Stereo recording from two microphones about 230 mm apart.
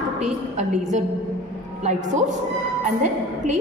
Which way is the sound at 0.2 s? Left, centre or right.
Right.